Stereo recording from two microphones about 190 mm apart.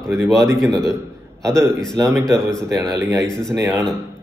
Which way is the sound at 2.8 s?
20° right (ahead or behind).